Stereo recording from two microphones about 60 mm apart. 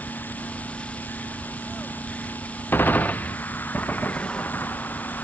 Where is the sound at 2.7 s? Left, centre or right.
Left.